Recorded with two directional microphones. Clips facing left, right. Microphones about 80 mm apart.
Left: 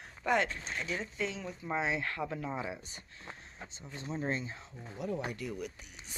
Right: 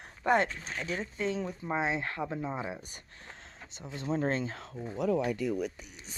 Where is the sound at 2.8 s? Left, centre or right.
Right.